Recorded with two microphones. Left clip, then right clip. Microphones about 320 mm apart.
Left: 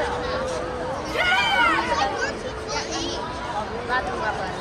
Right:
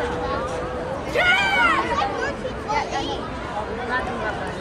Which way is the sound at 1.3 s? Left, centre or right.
Left.